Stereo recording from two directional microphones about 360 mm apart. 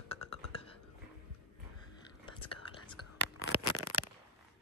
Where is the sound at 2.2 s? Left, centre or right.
Centre.